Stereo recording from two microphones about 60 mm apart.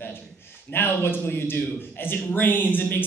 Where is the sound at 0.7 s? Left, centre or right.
Left.